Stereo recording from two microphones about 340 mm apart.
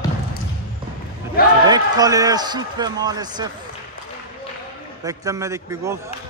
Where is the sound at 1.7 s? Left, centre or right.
Centre.